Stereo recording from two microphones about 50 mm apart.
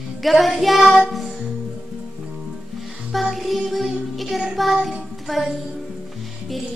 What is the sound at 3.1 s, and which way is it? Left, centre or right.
Music, centre.